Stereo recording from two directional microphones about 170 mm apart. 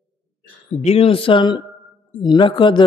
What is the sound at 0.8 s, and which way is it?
Speech, 35° left (ahead or behind).